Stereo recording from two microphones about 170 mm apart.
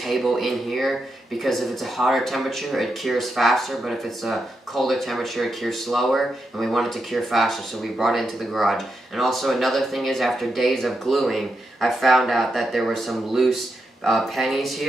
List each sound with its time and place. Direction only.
0.0 s speech: centre (ahead or behind)